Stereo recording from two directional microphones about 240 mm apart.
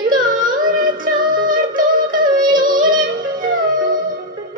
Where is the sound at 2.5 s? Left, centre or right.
Right.